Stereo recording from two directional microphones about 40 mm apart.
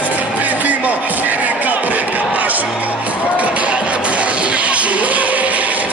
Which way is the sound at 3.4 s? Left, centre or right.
Right.